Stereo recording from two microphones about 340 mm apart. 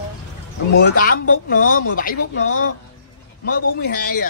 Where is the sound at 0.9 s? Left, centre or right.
Left.